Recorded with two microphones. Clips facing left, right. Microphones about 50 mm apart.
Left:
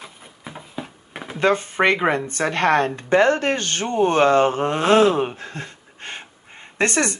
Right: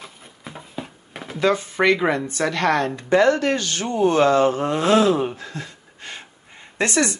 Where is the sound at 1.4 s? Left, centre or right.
Left.